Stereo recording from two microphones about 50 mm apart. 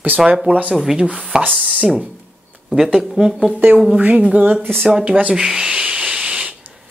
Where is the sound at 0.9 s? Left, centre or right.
Centre.